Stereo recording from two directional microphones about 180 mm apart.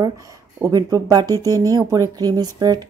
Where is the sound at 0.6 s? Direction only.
20° right (ahead or behind).